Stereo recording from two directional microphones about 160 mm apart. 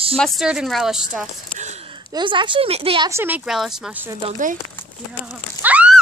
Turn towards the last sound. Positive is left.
turn(degrees=-10)  # may be behind; listen again after turning